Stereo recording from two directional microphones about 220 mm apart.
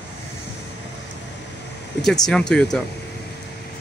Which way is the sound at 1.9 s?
Centre (ahead or behind).